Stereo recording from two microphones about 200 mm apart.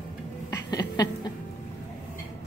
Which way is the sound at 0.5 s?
20° left (ahead or behind).